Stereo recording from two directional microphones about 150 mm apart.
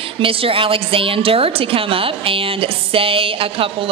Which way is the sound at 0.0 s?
40° right (ahead or behind).